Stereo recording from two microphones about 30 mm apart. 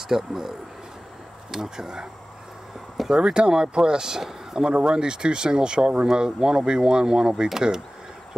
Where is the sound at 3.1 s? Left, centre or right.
Right.